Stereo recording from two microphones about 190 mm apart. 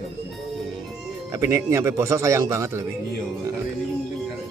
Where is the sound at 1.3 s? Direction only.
15° right (ahead or behind).